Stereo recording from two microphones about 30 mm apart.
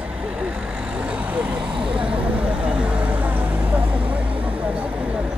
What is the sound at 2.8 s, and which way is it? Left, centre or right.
Vehicle, right.